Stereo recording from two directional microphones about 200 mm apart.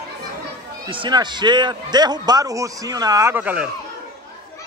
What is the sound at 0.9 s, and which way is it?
A man's voice, 25° right (ahead or behind).